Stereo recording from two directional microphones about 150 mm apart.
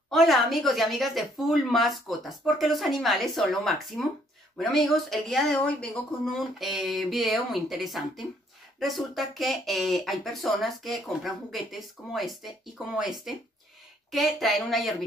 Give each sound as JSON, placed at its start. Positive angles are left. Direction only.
{"t": 0.1, "sound": "speech", "side_deg": 0}